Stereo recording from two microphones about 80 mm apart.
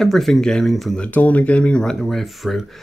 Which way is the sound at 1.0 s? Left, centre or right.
Centre.